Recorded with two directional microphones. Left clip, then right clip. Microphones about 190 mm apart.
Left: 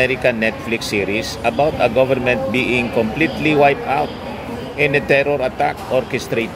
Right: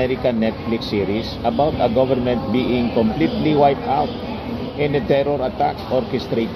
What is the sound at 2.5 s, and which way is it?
Speech, 15° left (ahead or behind).